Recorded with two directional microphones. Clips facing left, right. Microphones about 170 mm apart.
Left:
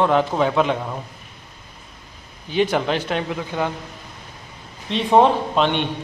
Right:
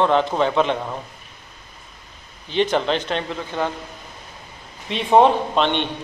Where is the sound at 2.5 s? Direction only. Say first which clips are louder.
Even; 10° left (ahead or behind).